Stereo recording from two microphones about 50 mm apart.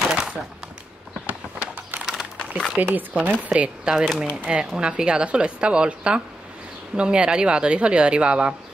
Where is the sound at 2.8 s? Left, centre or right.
Right.